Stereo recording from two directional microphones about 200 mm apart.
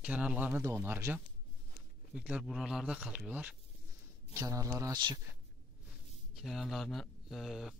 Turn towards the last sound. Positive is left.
turn(degrees=0)  # may be behind; listen again after turning